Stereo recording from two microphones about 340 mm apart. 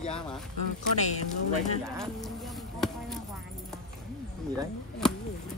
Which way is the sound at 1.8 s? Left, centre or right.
Centre.